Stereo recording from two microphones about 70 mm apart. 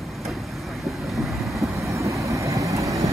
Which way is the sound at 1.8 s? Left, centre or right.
Right.